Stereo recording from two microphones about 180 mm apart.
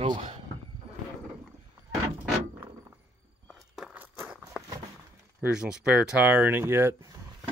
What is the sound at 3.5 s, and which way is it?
Walk, centre (ahead or behind).